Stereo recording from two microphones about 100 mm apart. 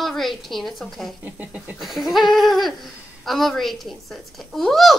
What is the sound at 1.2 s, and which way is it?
Speech, 15° right (ahead or behind).